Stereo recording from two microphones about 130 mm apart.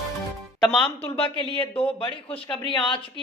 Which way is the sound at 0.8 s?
45° left (ahead or behind).